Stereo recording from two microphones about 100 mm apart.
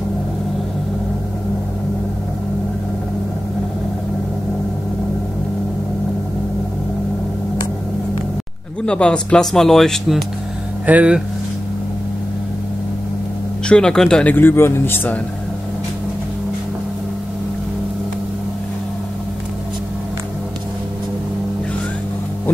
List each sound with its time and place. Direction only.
8.8 s speech: 10° left (ahead or behind)
10.9 s speech: 10° right (ahead or behind)
13.7 s speech: 10° left (ahead or behind)
14.3 s speech: 20° left (ahead or behind)